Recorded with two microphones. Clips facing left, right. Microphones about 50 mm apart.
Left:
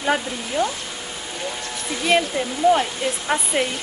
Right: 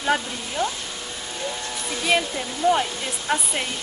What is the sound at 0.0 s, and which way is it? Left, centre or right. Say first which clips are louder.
Speech: left 1 dB; centre.